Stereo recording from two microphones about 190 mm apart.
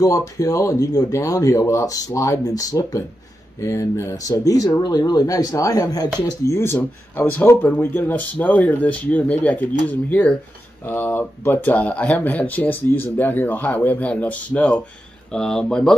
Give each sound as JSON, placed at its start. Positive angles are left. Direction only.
{"t": 0.0, "sound": "speech", "side_deg": 15}